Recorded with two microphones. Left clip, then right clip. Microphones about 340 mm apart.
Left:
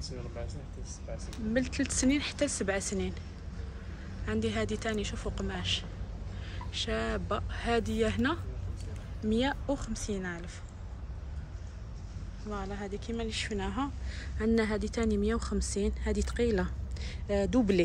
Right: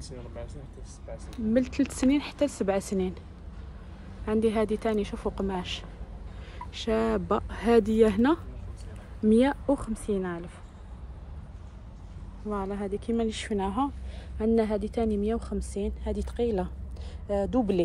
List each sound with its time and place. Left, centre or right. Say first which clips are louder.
1.1 s speech: right 5 dB; centre
4.3 s a woman's voice: right 7 dB; centre
12.4 s speech: right 6 dB; centre